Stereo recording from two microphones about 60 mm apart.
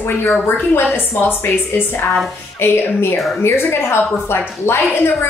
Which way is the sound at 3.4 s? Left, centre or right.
Left.